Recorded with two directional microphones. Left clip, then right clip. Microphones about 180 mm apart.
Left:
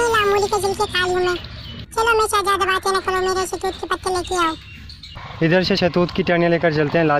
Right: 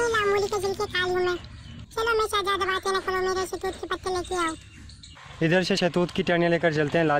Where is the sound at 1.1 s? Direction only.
5° left (ahead or behind).